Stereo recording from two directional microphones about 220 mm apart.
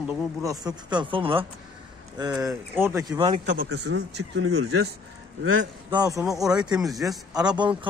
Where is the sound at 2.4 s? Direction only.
5° right (ahead or behind).